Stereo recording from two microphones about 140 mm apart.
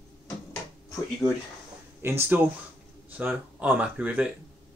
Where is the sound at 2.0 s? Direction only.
15° right (ahead or behind).